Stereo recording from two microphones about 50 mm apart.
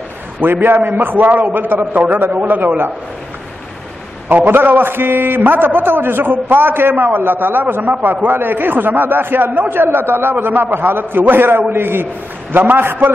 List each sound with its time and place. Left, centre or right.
0.4 s a man's voice: right
4.5 s a man's voice: right